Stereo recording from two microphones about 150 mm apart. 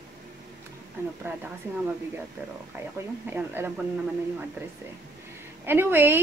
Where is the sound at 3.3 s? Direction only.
15° right (ahead or behind).